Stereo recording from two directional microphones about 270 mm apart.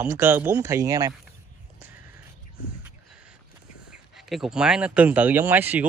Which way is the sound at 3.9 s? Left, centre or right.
Centre.